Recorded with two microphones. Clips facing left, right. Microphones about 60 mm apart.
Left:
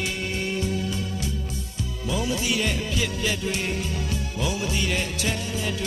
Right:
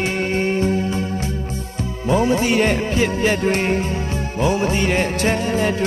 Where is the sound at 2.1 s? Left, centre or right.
Right.